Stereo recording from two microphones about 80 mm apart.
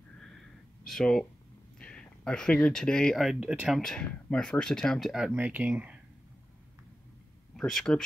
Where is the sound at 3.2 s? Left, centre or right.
Centre.